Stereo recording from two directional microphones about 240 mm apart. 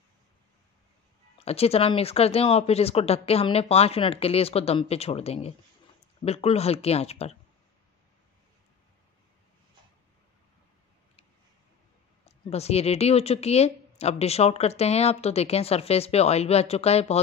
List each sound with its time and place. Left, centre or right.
1.4 s a woman's voice: left
12.3 s a woman's voice: left